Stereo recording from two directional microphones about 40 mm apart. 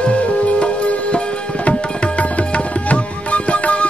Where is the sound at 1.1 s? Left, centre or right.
Left.